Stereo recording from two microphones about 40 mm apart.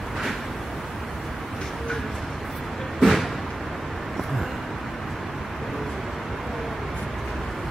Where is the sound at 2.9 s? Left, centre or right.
Centre.